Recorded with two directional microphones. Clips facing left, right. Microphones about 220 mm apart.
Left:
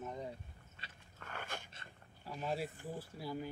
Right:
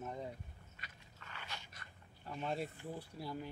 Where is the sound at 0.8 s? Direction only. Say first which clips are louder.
Left 1 dB; 30° left (ahead or behind).